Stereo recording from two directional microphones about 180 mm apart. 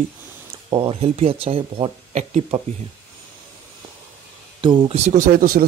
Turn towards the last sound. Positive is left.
turn(degrees=-55)  # may be behind; listen again after turning